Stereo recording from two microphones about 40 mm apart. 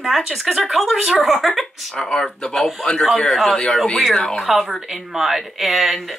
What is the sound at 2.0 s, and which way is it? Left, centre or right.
A woman's voice, centre.